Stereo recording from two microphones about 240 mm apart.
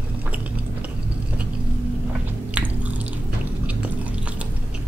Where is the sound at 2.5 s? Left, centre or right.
Centre.